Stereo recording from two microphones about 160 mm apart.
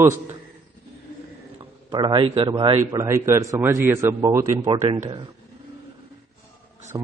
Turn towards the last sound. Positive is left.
turn(degrees=-20)  # may be behind; listen again after turning